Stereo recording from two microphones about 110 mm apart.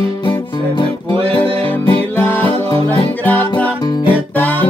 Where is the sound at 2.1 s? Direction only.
20° left (ahead or behind).